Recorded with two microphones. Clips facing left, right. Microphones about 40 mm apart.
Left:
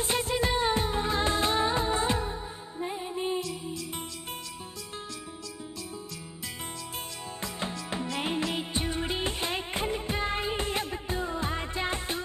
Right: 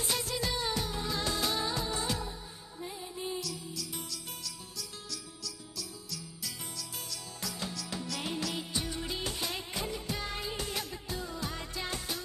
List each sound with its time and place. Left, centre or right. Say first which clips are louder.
0.0 s music: left 6 dB; left
7.4 s music: left 4 dB; left